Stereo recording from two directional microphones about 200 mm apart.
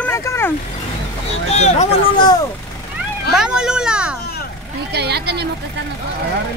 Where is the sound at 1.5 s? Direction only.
35° left (ahead or behind).